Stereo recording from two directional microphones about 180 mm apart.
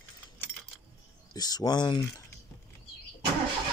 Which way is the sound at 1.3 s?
20° left (ahead or behind).